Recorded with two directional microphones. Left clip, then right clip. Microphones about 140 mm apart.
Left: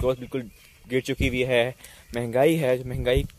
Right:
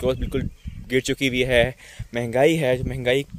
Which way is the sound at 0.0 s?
45° right (ahead or behind).